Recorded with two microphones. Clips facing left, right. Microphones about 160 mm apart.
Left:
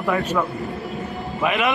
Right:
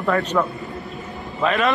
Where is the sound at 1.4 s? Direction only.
15° left (ahead or behind).